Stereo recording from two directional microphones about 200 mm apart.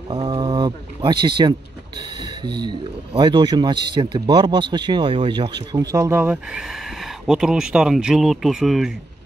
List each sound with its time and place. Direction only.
0.1 s speech: 25° right (ahead or behind); by 8.9 s centre (ahead or behind)